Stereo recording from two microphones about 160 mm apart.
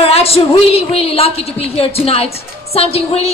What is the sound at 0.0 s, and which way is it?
A woman's voice, 40° left (ahead or behind).